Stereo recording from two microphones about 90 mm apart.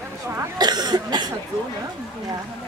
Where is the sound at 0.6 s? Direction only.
50° right (ahead or behind).